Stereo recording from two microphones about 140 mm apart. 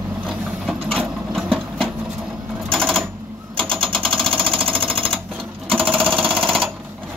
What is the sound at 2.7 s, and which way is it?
Sewing machine, 5° left (ahead or behind).